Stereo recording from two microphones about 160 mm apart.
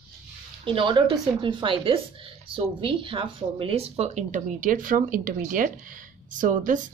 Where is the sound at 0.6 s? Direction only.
30° right (ahead or behind).